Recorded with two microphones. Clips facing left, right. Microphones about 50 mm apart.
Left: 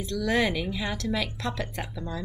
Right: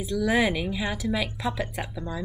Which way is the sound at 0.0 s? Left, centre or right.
Centre.